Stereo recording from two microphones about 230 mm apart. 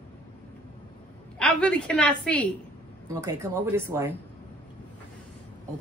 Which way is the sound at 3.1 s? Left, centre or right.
Centre.